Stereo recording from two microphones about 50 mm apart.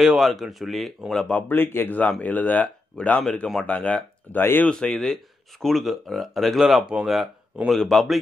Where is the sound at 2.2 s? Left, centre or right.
Left.